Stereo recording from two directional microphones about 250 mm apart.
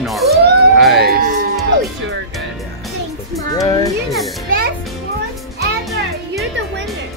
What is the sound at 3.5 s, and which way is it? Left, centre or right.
Speech, centre.